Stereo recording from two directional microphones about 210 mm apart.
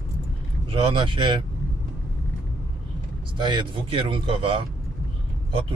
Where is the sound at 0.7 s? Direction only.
25° right (ahead or behind).